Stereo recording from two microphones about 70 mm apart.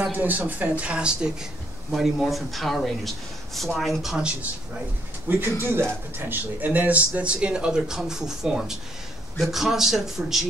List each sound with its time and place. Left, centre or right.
0.1 s speech: right
0.8 s speech: centre
5.3 s speech: right; by 10.4 s centre